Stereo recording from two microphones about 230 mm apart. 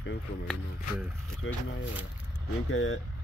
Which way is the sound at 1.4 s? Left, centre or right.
Left.